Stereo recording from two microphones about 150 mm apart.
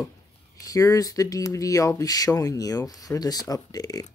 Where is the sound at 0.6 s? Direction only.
25° left (ahead or behind).